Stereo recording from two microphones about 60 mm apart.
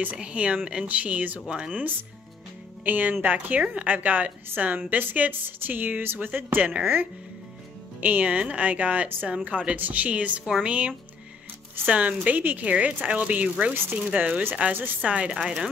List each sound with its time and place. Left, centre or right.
0.2 s a woman's voice: centre
1.5 s a woman's voice: centre
2.8 s a woman's voice: right
6.7 s a woman's voice: centre
8.0 s a woman's voice: right
10.4 s a woman's voice: centre
10.7 s a woman's voice: right
15.0 s a woman's voice: centre